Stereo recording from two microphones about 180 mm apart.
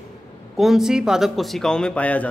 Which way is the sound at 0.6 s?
Centre (ahead or behind).